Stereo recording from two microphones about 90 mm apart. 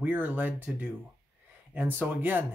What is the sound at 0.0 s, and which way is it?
Speech, 20° right (ahead or behind).